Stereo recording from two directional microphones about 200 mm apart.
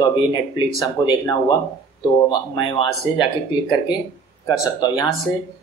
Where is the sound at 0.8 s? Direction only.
20° left (ahead or behind).